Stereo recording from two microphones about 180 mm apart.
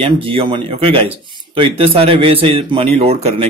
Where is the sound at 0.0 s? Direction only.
30° right (ahead or behind).